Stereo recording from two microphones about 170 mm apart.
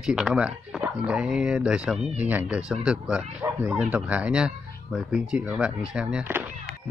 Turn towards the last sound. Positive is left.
turn(degrees=-10)  # may be behind; listen again after turning